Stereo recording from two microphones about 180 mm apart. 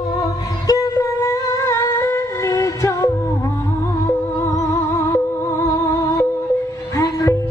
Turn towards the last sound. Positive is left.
turn(degrees=20)  # may be behind; listen again after turning